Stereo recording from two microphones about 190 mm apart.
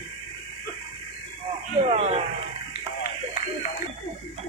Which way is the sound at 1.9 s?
35° right (ahead or behind).